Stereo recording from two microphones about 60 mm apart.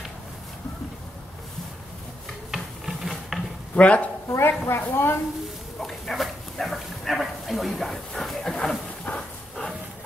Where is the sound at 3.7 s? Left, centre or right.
Left.